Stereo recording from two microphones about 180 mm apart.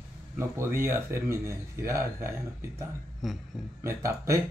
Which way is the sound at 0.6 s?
15° right (ahead or behind).